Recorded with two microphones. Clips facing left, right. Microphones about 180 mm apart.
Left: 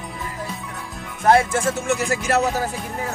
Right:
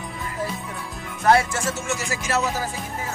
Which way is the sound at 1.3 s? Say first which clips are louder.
Left 3 dB; 55° left (ahead or behind).